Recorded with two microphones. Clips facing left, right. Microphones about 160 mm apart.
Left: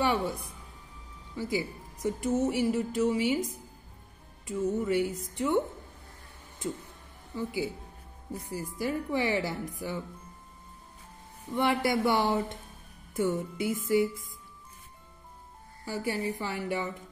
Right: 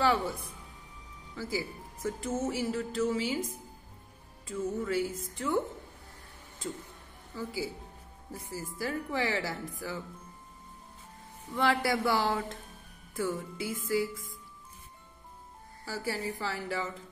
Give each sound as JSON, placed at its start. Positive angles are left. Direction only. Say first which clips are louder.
{"t": 0.0, "sound": "a woman's voice", "louder": "even", "side_deg": 15}
{"t": 4.5, "sound": "speech", "louder": "left 4 dB", "side_deg": 20}
{"t": 7.3, "sound": "speech", "louder": "left 3 dB", "side_deg": 20}
{"t": 11.5, "sound": "speech", "louder": "left 2 dB", "side_deg": 20}
{"t": 15.8, "sound": "a woman's voice", "louder": "left 3 dB", "side_deg": 15}